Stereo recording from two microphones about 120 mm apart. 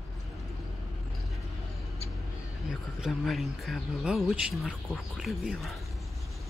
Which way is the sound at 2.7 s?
5° right (ahead or behind).